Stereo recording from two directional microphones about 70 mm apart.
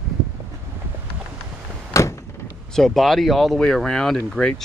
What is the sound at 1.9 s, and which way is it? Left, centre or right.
Door, left.